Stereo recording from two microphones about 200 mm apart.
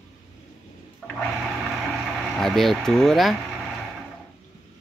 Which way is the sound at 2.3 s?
Centre (ahead or behind).